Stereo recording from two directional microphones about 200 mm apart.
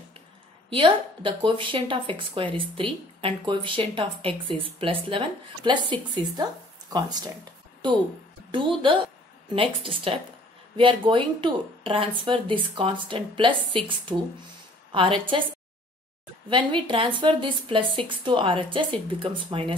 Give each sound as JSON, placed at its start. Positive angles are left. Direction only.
{"t": 0.7, "sound": "a woman's voice", "side_deg": -25}
{"t": 8.5, "sound": "a woman's voice", "side_deg": -25}
{"t": 16.4, "sound": "a woman's voice", "side_deg": -25}